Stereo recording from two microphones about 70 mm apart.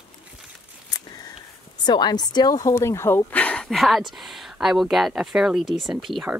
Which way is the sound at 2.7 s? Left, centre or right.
Left.